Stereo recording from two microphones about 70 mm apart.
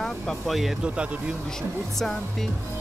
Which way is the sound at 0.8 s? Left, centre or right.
Centre.